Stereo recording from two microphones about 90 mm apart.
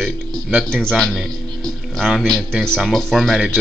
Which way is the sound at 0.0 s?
10° left (ahead or behind).